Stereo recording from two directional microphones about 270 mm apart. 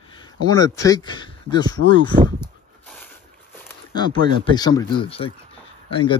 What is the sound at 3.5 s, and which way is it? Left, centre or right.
Speech, centre.